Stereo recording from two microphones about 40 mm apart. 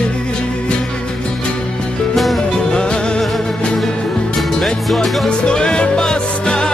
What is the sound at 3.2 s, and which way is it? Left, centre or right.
Music, centre.